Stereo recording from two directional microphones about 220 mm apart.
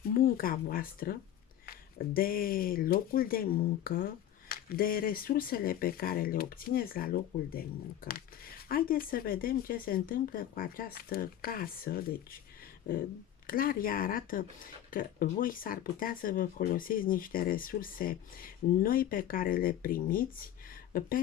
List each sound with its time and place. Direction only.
0.1 s speech: 40° left (ahead or behind)